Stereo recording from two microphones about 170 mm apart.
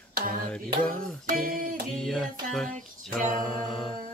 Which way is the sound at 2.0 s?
Centre (ahead or behind).